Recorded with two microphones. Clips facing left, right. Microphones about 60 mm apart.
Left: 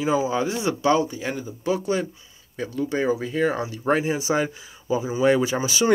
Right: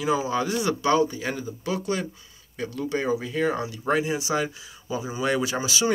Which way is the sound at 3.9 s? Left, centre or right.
Left.